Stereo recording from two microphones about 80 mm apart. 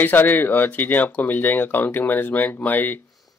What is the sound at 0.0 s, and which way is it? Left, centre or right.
Speech, left.